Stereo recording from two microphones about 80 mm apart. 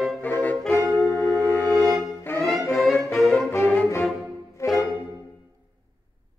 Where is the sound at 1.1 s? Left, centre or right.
Left.